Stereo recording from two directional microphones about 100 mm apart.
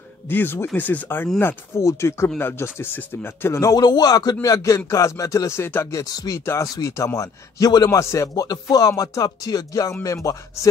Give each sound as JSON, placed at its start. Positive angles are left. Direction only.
{"t": 0.3, "sound": "speech", "side_deg": 20}
{"t": 1.4, "sound": "speech", "side_deg": 30}
{"t": 3.5, "sound": "a man's voice", "side_deg": 35}
{"t": 6.4, "sound": "a man's voice", "side_deg": 25}